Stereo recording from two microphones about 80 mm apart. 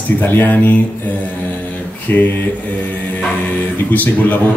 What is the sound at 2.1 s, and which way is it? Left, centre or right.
Speech, left.